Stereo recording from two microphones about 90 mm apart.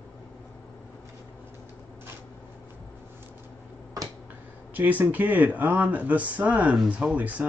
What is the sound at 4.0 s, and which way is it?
Finger snapping, 40° right (ahead or behind).